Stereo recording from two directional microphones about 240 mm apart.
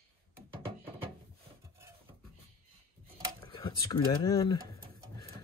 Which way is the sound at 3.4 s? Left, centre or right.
Centre.